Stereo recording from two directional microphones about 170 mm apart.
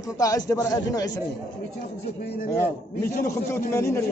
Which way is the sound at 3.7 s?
15° left (ahead or behind).